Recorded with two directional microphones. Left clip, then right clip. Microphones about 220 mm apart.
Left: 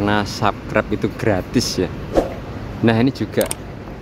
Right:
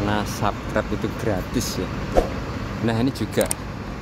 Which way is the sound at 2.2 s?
Centre (ahead or behind).